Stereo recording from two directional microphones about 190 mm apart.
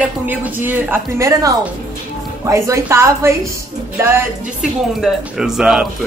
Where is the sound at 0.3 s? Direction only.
10° right (ahead or behind).